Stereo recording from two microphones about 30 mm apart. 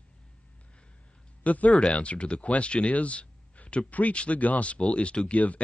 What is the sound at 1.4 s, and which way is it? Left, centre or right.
Speech, left.